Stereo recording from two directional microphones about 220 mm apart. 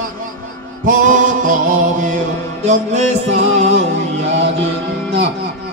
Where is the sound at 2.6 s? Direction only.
30° right (ahead or behind).